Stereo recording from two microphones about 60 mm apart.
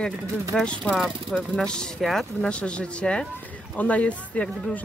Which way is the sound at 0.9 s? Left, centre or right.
Centre.